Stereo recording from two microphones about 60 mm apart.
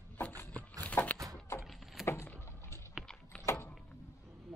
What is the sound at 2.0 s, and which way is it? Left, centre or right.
Vehicle, left.